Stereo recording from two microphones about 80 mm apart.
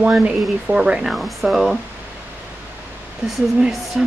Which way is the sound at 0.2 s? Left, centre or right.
Centre.